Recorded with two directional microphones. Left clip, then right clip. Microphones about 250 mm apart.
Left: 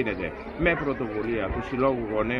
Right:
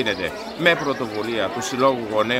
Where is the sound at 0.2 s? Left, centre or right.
Centre.